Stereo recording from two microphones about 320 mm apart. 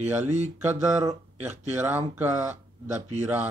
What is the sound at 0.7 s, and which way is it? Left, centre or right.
Speech, centre.